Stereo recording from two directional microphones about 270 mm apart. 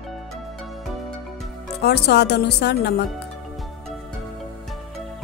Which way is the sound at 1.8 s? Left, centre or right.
Left.